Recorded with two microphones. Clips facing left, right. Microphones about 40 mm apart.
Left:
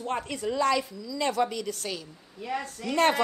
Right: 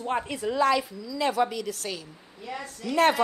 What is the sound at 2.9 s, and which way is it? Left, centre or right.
Speech, centre.